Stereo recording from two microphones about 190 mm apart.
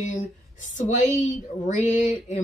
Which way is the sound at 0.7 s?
40° left (ahead or behind).